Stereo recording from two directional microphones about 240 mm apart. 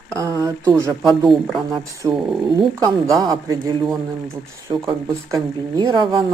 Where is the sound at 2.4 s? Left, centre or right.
Centre.